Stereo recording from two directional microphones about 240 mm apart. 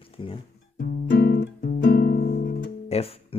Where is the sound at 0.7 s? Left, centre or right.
Left.